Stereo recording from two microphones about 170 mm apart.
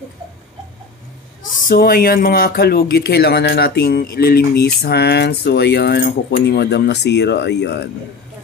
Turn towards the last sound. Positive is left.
turn(degrees=85)